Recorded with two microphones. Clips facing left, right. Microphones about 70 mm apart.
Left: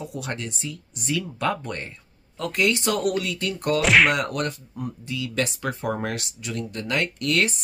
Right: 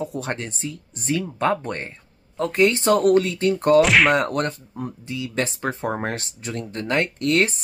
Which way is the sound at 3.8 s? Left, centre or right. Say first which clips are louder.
Right 1 dB; centre.